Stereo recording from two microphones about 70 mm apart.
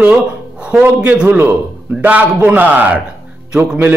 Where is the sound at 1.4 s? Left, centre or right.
Right.